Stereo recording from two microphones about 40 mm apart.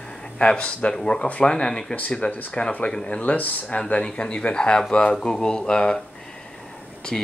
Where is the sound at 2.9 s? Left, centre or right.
Left.